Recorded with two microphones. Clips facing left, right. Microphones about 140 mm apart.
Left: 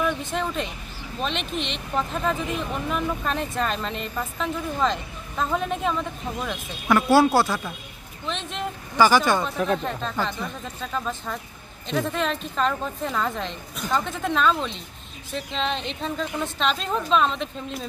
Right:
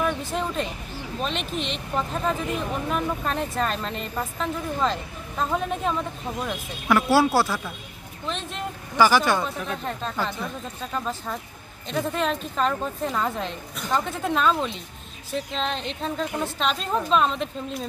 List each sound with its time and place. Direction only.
0.0 s speech: centre (ahead or behind)